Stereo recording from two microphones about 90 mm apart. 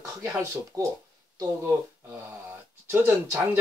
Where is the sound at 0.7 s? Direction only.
35° right (ahead or behind).